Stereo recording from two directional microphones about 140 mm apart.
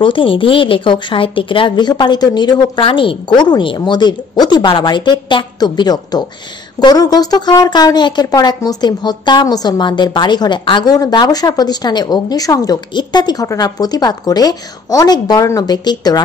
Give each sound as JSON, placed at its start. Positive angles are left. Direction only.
{"t": 0.0, "sound": "a woman's voice", "side_deg": 40}